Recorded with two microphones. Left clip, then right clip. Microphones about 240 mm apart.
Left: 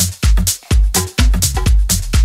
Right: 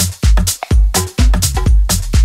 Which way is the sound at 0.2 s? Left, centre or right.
Centre.